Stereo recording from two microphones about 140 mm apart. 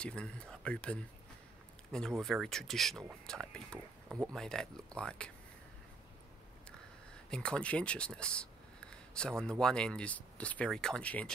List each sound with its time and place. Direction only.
0.0 s speech: 5° left (ahead or behind)
7.2 s speech: 5° left (ahead or behind)